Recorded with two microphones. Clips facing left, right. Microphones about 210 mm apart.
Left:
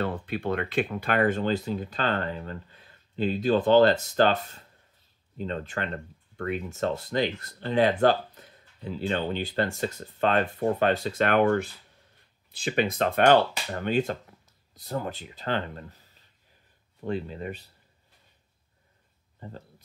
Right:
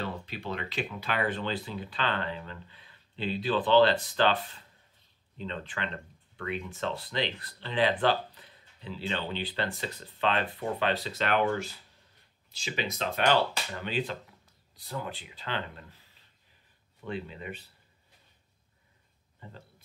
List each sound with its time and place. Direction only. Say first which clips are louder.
0.0 s speech: left 7 dB; 50° left (ahead or behind)
19.4 s speech: left 7 dB; 40° left (ahead or behind)